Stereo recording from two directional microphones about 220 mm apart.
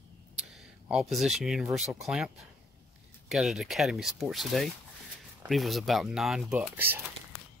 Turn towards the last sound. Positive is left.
turn(degrees=-5)  # may be behind; listen again after turning